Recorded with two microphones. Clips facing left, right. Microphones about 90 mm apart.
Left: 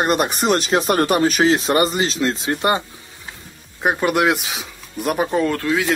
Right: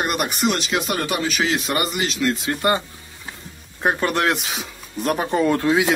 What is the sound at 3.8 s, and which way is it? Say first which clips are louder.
Speech: left 3 dB; 10° left (ahead or behind).